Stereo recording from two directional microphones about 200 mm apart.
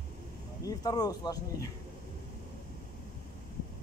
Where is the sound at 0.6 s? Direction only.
20° left (ahead or behind).